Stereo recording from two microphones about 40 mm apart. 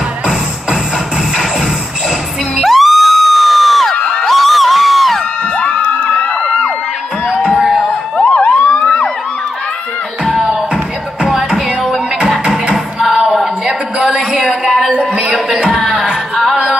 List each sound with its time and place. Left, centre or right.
2.6 s crowd: centre
4.2 s music: centre
5.7 s crowd: left
7.5 s a sound: centre
8.2 s emergency vehicle: left
8.8 s crowd: left
12.7 s music: centre
13.9 s a sound: right
15.7 s music: centre